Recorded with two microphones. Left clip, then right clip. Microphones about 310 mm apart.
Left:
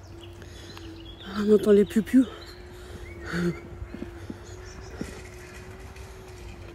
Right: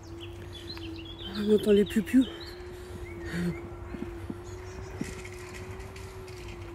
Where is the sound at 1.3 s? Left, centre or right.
Centre.